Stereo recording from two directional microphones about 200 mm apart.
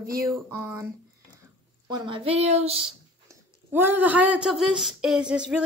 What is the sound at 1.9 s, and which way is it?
Speech, 25° right (ahead or behind).